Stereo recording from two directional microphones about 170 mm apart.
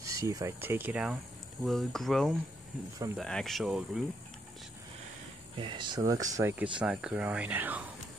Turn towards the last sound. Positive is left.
turn(degrees=-10)  # may be behind; listen again after turning